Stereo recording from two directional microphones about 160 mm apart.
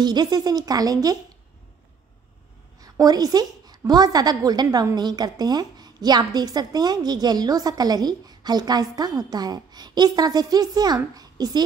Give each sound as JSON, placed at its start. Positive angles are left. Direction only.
{"t": 0.0, "sound": "a woman's voice", "side_deg": -25}
{"t": 2.8, "sound": "a woman's voice", "side_deg": -25}